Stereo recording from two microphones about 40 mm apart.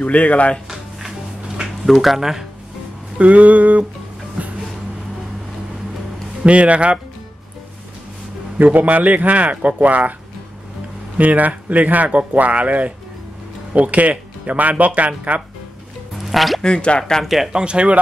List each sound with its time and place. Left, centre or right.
0.0 s speech: left
1.9 s speech: centre
3.2 s speech: right
4.4 s music: right
6.4 s speech: right
8.7 s speech: right
11.1 s speech: right
16.2 s music: centre
16.6 s speech: left
17.2 s speech: centre
17.5 s speech: right